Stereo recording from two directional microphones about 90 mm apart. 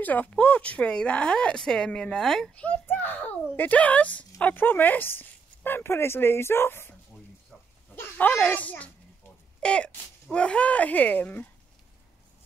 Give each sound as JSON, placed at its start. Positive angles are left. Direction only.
{"t": 0.0, "sound": "speech", "side_deg": 20}
{"t": 2.6, "sound": "a child's voice", "side_deg": 20}
{"t": 9.6, "sound": "a sound", "side_deg": 10}
{"t": 10.3, "sound": "speech", "side_deg": 10}